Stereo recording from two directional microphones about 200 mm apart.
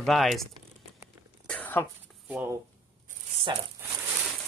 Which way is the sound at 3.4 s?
15° right (ahead or behind).